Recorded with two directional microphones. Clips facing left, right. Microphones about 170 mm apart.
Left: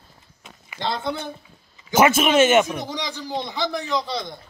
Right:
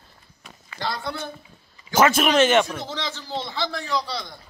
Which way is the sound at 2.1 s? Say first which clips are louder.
Left 2 dB; 5° left (ahead or behind).